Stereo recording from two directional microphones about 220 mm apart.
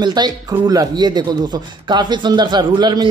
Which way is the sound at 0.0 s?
20° right (ahead or behind).